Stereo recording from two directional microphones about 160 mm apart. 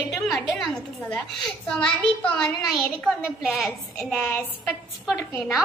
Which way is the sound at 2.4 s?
Centre (ahead or behind).